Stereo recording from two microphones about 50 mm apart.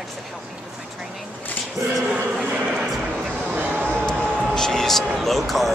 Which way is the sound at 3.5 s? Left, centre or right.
Right.